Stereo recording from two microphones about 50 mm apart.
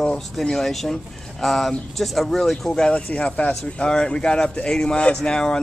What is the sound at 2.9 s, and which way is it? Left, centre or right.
Speech, left.